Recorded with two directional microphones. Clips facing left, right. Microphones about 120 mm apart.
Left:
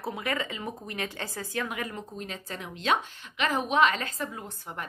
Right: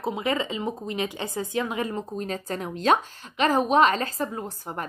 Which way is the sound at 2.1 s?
40° right (ahead or behind).